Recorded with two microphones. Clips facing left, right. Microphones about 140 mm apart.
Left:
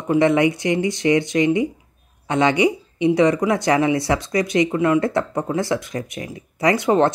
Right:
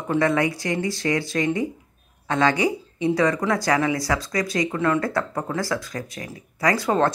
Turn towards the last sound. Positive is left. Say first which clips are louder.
# left 4 dB
turn(degrees=20)  # may be behind; listen again after turning